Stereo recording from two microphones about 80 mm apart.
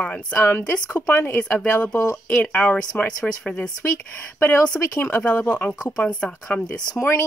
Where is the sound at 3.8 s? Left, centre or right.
Left.